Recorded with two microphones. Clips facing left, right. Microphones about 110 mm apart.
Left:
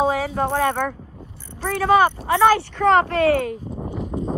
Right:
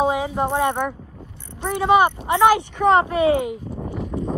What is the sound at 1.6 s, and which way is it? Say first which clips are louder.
Speech: even; 20° right (ahead or behind).